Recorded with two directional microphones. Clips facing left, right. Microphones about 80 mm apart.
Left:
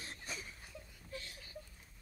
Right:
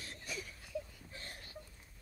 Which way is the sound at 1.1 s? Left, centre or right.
Right.